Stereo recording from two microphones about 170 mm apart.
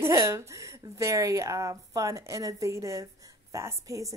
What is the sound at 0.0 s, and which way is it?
Speech, 15° right (ahead or behind).